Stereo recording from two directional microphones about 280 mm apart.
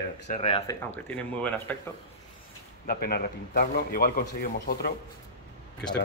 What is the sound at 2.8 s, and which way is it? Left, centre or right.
Speech, left.